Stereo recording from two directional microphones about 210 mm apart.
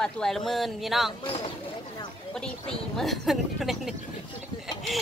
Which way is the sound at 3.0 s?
Centre (ahead or behind).